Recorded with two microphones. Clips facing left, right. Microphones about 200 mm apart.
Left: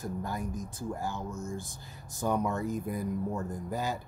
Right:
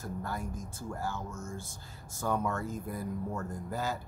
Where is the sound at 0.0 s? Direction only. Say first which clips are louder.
Left 3 dB; 15° left (ahead or behind).